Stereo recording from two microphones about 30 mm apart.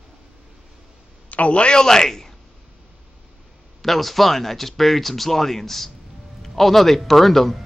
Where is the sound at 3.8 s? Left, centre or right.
Centre.